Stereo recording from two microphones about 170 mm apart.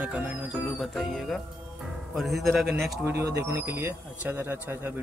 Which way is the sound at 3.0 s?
15° right (ahead or behind).